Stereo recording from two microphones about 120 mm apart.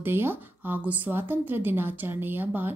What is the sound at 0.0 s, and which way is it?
A woman's voice, 20° right (ahead or behind).